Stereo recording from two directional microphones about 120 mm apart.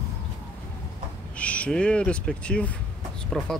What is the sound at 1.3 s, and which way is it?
Speech, 10° left (ahead or behind).